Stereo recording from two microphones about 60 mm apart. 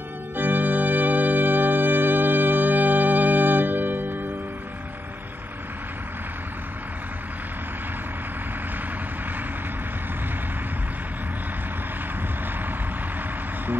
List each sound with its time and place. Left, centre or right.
0.4 s organ: right